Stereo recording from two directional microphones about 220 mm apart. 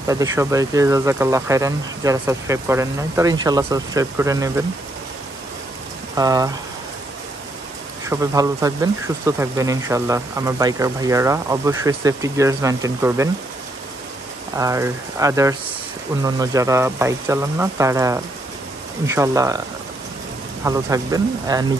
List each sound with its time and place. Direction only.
0.0 s speech: 15° right (ahead or behind)
6.1 s speech: 15° right (ahead or behind)
8.0 s speech: 15° right (ahead or behind)
14.6 s speech: 15° right (ahead or behind)
20.6 s speech: 15° right (ahead or behind)